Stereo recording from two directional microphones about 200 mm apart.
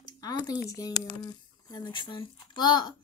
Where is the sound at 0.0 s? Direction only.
20° left (ahead or behind).